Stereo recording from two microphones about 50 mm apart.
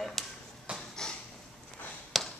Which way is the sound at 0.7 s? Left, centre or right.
Right.